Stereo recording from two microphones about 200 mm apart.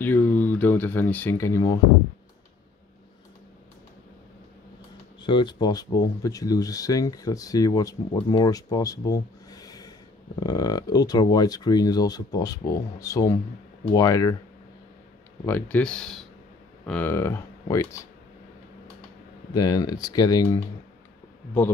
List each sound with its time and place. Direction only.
0.0 s speech: 10° left (ahead or behind)
5.2 s speech: 25° left (ahead or behind)
15.4 s speech: 10° left (ahead or behind)
19.5 s speech: 20° left (ahead or behind)